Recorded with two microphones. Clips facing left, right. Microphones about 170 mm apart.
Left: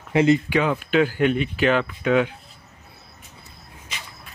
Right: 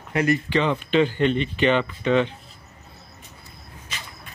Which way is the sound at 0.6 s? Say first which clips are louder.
Even; 5° left (ahead or behind).